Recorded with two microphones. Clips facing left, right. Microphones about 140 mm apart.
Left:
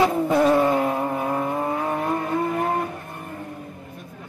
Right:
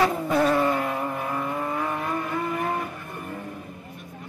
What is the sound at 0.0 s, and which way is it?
Vehicle, 15° left (ahead or behind).